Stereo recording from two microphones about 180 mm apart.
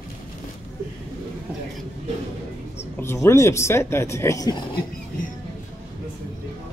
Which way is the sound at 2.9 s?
15° left (ahead or behind).